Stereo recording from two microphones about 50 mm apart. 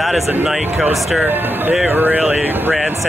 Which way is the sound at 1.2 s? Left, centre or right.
Right.